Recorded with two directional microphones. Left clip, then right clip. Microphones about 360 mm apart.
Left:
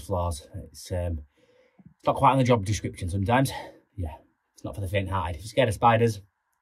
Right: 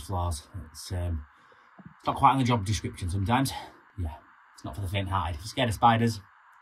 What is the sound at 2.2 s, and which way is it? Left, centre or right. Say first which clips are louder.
A man's voice: left 1 dB; centre.